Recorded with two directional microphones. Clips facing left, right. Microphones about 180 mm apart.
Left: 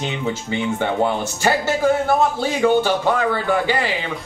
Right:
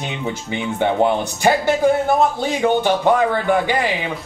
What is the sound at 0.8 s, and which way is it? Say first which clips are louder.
A man's voice: right 6 dB; 15° right (ahead or behind).